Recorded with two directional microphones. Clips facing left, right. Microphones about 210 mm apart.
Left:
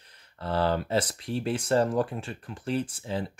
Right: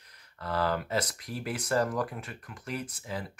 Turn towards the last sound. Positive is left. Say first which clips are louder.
# left 6 dB
turn(degrees=30)  # may be behind; listen again after turning